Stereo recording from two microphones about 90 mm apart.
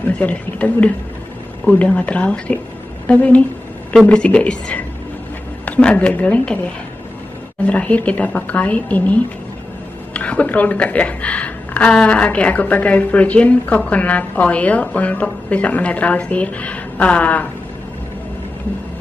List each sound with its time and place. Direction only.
0.2 s a woman's voice: 15° left (ahead or behind)
7.6 s a woman's voice: 15° left (ahead or behind)